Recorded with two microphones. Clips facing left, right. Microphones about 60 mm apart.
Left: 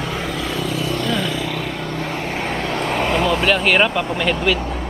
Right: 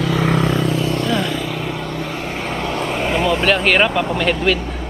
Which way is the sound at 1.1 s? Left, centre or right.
Centre.